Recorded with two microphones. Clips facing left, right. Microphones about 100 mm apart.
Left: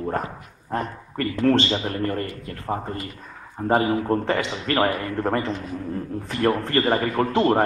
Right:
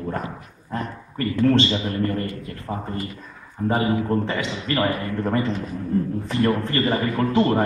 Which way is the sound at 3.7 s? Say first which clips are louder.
Left 1 dB; 25° left (ahead or behind).